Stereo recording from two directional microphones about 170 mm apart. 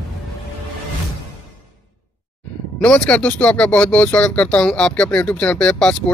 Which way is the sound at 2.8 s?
5° left (ahead or behind).